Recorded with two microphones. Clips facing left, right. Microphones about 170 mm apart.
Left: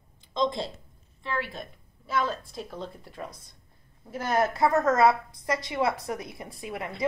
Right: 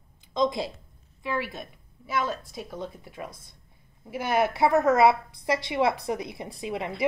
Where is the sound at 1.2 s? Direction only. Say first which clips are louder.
Right 2 dB; 5° right (ahead or behind).